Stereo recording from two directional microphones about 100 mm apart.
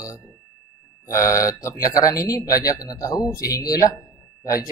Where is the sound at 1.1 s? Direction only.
35° left (ahead or behind).